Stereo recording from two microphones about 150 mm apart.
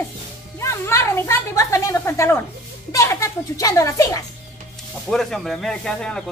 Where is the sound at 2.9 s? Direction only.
20° left (ahead or behind).